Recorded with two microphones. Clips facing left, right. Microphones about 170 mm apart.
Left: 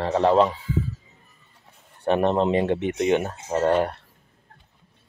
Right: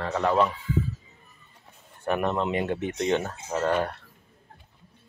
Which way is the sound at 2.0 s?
30° left (ahead or behind).